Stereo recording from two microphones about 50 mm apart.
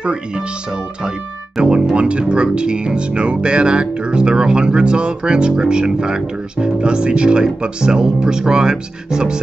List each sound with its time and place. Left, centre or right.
0.0 s speech: right
1.6 s speech: centre